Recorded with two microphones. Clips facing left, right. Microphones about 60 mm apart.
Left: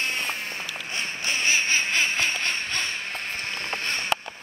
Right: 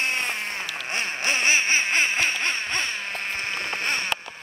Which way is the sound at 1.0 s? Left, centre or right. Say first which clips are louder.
Right 3 dB; right.